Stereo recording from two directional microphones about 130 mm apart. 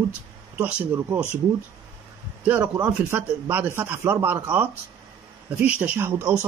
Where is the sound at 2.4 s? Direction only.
15° right (ahead or behind).